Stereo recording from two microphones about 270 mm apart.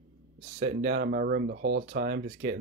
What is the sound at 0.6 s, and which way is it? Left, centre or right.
Speech, right.